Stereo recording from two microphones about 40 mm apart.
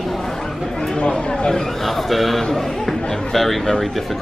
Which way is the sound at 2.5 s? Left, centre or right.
Centre.